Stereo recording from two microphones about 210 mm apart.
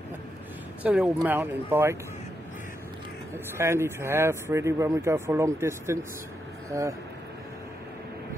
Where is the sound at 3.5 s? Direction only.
10° right (ahead or behind).